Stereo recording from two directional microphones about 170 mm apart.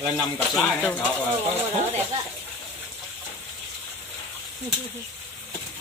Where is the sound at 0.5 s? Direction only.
10° left (ahead or behind).